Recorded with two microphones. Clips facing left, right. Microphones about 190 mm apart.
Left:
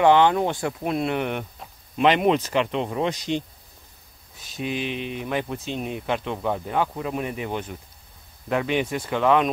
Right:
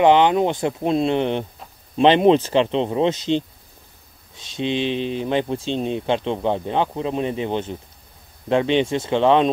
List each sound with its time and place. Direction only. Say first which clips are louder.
0.0 s speech: right 2 dB; 20° right (ahead or behind)
4.6 s speech: right 6 dB; 25° right (ahead or behind)